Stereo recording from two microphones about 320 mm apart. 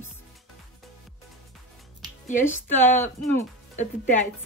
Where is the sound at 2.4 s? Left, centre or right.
Centre.